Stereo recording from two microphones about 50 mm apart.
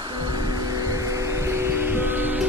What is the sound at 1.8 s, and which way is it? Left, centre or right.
Music, right.